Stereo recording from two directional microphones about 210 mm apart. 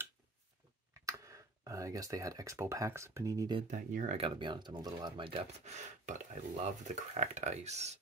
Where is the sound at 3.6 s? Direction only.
40° right (ahead or behind).